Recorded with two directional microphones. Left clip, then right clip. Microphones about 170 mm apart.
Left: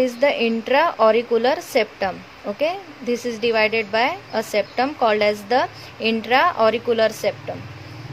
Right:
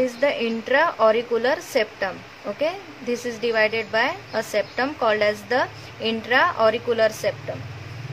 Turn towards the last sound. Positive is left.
turn(degrees=20)  # may be behind; listen again after turning